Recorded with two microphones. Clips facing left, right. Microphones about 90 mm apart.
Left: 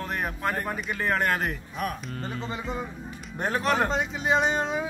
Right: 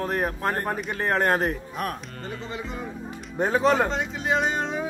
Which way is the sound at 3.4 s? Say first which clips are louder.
Right 4 dB; 25° right (ahead or behind).